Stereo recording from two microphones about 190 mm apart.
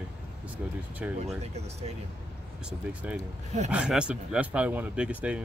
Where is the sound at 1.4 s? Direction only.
35° right (ahead or behind).